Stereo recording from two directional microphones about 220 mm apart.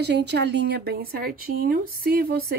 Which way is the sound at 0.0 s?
50° right (ahead or behind).